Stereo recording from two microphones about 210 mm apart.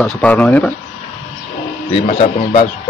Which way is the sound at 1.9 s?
30° left (ahead or behind).